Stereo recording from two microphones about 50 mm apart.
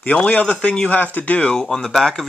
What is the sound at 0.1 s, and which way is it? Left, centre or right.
Speech, left.